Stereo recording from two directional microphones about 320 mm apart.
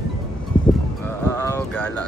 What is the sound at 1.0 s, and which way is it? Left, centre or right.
Speech, centre.